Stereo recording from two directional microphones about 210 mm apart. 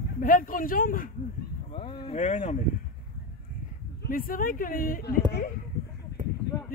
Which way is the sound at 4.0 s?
45° left (ahead or behind).